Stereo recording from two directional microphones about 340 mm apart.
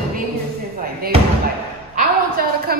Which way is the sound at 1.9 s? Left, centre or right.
Right.